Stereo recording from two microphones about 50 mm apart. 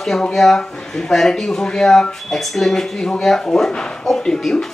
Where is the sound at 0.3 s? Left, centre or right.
Centre.